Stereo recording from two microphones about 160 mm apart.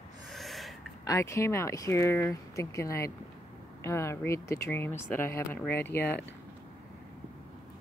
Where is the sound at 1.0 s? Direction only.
20° left (ahead or behind).